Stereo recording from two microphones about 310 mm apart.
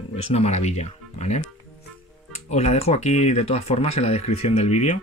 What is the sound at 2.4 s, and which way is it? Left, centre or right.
Speech, left.